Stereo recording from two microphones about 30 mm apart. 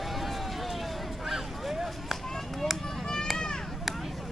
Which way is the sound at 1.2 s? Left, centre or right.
Centre.